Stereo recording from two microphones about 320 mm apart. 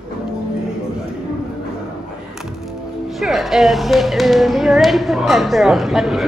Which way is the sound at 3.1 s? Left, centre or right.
Centre.